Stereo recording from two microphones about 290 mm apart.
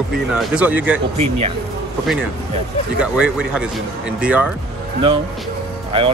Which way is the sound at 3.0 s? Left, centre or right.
Centre.